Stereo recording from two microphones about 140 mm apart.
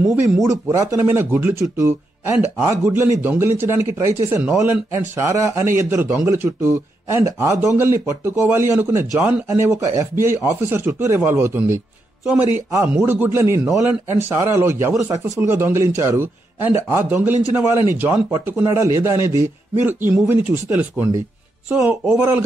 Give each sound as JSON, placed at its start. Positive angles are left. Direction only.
{"t": 0.1, "sound": "a man's voice", "side_deg": -20}